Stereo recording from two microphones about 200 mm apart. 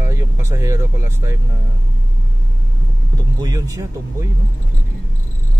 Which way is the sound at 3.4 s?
20° right (ahead or behind).